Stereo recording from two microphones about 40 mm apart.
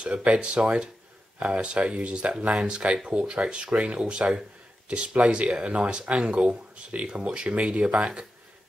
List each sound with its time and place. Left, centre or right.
0.0 s speech: right